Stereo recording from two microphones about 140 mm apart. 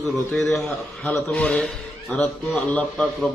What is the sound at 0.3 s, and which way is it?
A man's voice, centre (ahead or behind).